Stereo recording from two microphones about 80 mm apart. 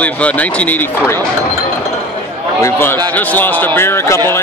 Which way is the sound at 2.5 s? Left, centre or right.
Left.